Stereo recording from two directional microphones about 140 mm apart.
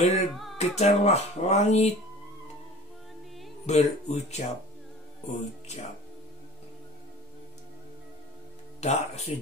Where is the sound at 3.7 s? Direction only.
55° left (ahead or behind).